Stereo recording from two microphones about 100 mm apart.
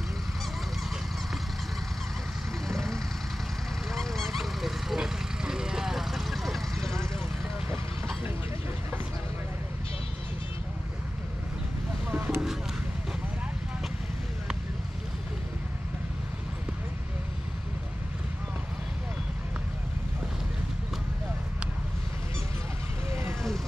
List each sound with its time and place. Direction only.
2.7 s vehicle: 5° left (ahead or behind)
3.9 s honk: 5° left (ahead or behind)
12.1 s a sound: 20° right (ahead or behind)